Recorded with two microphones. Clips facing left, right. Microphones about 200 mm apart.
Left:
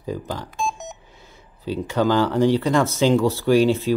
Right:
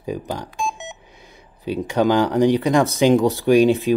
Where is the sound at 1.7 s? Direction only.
15° right (ahead or behind).